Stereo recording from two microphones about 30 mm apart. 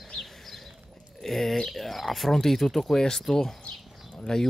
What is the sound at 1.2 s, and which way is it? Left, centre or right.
Speech, centre.